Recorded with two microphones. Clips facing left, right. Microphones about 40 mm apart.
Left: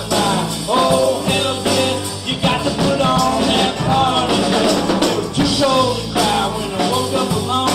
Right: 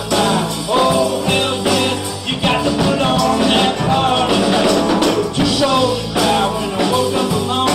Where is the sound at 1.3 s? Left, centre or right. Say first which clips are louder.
Right 2 dB; right.